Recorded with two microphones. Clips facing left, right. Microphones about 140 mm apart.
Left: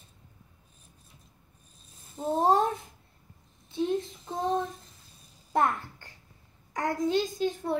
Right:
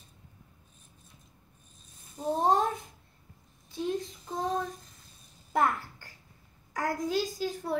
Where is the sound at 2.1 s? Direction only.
Centre (ahead or behind).